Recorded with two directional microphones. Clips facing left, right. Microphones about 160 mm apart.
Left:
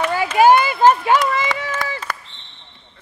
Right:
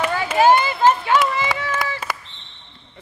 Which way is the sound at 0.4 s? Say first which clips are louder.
Left 2 dB; 10° left (ahead or behind).